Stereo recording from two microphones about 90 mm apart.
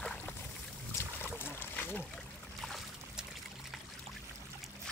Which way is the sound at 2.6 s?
Centre (ahead or behind).